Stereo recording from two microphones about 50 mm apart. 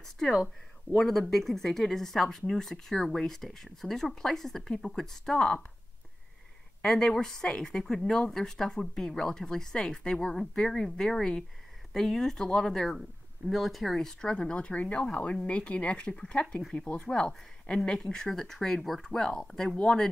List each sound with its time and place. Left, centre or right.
0.3 s speech: centre
6.8 s speech: centre
13.5 s speech: centre